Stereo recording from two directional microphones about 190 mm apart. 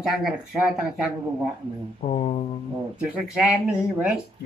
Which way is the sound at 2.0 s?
30° left (ahead or behind).